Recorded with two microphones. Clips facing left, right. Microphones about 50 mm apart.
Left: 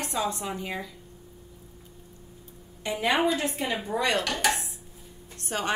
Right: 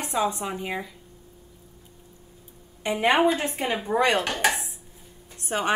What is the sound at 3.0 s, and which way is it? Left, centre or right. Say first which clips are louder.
A woman's voice: right 4 dB; right.